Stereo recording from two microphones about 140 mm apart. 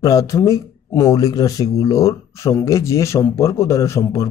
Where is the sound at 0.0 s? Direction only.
25° left (ahead or behind).